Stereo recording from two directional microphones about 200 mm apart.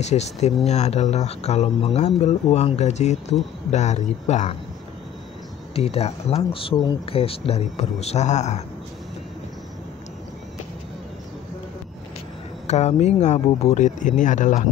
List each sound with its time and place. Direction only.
0.0 s speech: 35° left (ahead or behind)
5.8 s speech: 30° left (ahead or behind)
12.6 s speech: 35° left (ahead or behind)